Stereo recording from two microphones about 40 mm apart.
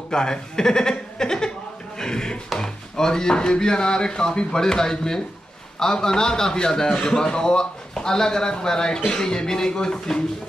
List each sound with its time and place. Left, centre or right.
0.1 s a man's voice: centre
2.0 s a sound: centre
2.6 s a man's voice: centre